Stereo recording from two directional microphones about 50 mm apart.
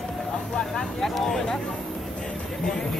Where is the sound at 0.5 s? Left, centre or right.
Centre.